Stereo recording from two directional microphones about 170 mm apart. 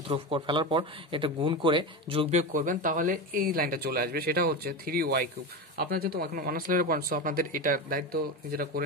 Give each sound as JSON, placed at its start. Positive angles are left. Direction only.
{"t": 0.1, "sound": "speech", "side_deg": -30}
{"t": 2.5, "sound": "speech", "side_deg": -50}